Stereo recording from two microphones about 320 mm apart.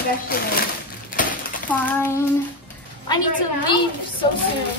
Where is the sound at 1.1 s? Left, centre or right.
Left.